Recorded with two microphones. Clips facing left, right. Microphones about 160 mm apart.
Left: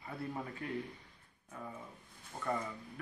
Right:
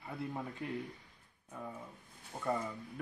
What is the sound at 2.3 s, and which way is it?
Speech, 10° right (ahead or behind).